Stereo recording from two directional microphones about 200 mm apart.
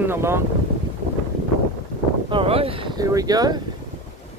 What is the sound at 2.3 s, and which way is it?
Speech, 25° right (ahead or behind).